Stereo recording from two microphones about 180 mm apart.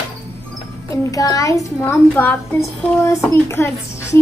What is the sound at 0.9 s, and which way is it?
A child's voice, 20° left (ahead or behind).